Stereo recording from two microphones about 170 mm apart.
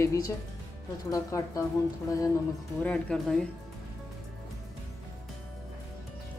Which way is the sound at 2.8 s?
5° left (ahead or behind).